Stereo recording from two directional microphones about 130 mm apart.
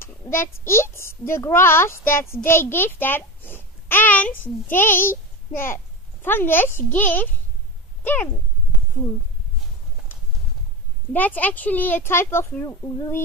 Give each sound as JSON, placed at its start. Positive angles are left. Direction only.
{"t": 0.0, "sound": "a child's voice", "side_deg": 20}
{"t": 11.1, "sound": "speech", "side_deg": 15}